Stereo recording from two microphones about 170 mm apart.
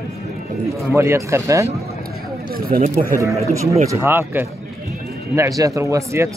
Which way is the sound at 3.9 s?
15° right (ahead or behind).